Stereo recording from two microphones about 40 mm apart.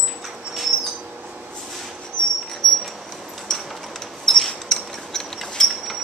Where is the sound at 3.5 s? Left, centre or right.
Centre.